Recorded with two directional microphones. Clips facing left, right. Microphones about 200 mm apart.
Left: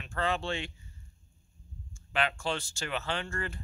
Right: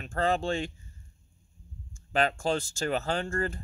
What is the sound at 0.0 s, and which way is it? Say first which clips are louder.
Speech: right 5 dB; 40° right (ahead or behind).